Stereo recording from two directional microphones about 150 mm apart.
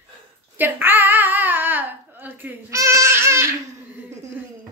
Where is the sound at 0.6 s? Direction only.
15° right (ahead or behind).